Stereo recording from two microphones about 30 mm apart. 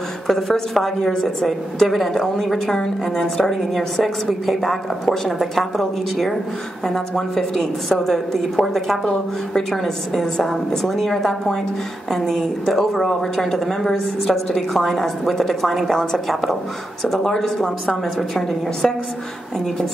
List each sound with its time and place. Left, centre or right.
0.3 s a woman's voice: centre
1.8 s a woman's voice: centre
2.7 s a woman's voice: centre
3.7 s a woman's voice: centre
5.4 s a woman's voice: centre
7.3 s a woman's voice: centre
9.5 s a woman's voice: centre
10.8 s a woman's voice: centre
17.8 s a woman's voice: centre